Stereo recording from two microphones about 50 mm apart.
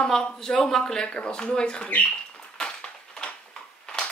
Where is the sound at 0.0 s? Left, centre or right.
Centre.